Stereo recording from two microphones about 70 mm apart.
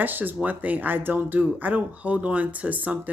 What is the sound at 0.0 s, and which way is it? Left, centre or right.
Speech, right.